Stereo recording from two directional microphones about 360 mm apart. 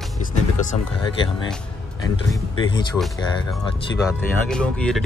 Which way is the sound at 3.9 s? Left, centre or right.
Centre.